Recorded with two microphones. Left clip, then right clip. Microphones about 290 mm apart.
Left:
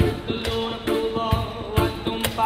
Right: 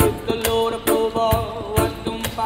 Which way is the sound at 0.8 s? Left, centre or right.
Centre.